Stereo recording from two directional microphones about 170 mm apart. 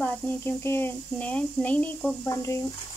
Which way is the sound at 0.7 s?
10° left (ahead or behind).